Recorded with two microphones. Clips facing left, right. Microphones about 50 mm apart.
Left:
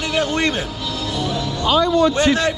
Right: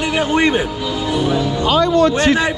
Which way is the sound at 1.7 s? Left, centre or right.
Right.